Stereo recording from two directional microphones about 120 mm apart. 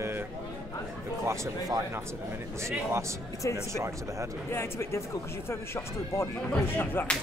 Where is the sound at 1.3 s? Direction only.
30° right (ahead or behind).